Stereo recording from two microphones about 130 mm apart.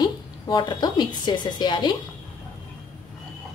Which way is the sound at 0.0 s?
35° left (ahead or behind).